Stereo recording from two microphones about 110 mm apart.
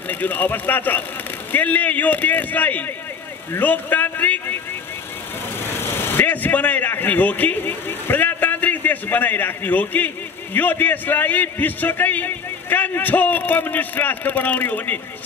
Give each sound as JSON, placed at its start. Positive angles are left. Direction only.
{"t": 0.1, "sound": "a man's voice", "side_deg": 15}
{"t": 5.6, "sound": "speech", "side_deg": 20}